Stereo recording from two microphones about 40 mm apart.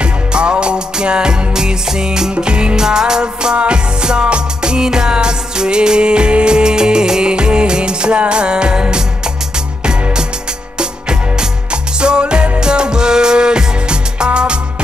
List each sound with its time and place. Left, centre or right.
0.0 s music: right
11.7 s music: right